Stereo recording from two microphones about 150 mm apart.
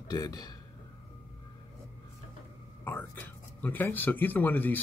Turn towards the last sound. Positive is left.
turn(degrees=10)  # may be behind; listen again after turning